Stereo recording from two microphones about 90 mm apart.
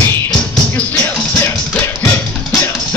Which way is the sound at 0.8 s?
20° left (ahead or behind).